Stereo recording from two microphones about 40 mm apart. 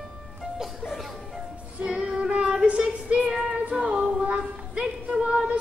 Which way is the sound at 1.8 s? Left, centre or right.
Right.